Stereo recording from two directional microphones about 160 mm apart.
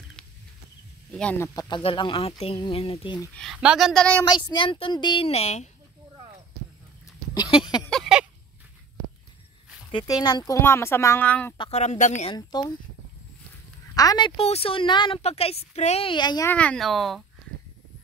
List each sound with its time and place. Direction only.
1.1 s speech: 10° left (ahead or behind)
1.5 s a woman's voice: 25° left (ahead or behind)
3.5 s a woman's voice: 5° right (ahead or behind)
4.2 s a woman's voice: 25° left (ahead or behind); by 5.7 s 40° left (ahead or behind)
7.5 s a sound: 25° left (ahead or behind)
7.9 s a sound: centre (ahead or behind)
9.8 s speech: 25° left (ahead or behind); by 11.5 s 10° left (ahead or behind)
11.5 s a woman's voice: 30° left (ahead or behind)
11.8 s speech: 45° left (ahead or behind)
12.4 s speech: 25° left (ahead or behind)
13.9 s a woman's voice: 25° left (ahead or behind)
16.4 s a woman's voice: 10° left (ahead or behind)